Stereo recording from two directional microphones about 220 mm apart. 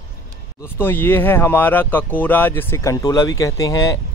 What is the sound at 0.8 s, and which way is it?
Speech, 10° left (ahead or behind).